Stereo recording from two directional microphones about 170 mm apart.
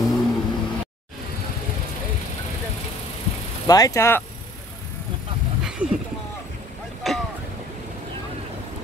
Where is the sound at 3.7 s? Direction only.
20° left (ahead or behind).